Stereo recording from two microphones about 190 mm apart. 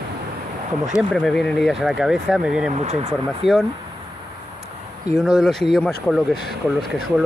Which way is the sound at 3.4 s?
Centre (ahead or behind).